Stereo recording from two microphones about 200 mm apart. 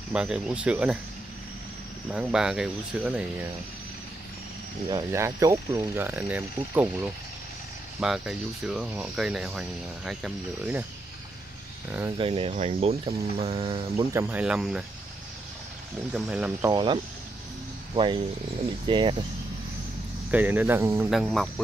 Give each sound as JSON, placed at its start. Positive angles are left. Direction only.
{"t": 0.1, "sound": "speech", "side_deg": -5}
{"t": 2.1, "sound": "speech", "side_deg": -5}
{"t": 4.8, "sound": "speech", "side_deg": -15}
{"t": 8.0, "sound": "speech", "side_deg": -5}
{"t": 12.2, "sound": "speech", "side_deg": -30}
{"t": 14.1, "sound": "speech", "side_deg": -10}
{"t": 16.1, "sound": "speech", "side_deg": -5}
{"t": 16.7, "sound": "speech", "side_deg": -25}
{"t": 20.2, "sound": "speech", "side_deg": -10}
{"t": 21.1, "sound": "speech", "side_deg": 0}